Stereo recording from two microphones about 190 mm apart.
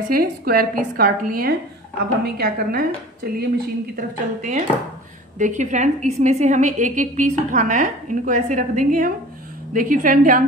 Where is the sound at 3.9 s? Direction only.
40° right (ahead or behind).